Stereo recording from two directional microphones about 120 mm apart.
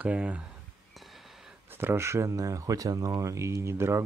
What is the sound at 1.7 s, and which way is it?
Speech, 20° right (ahead or behind).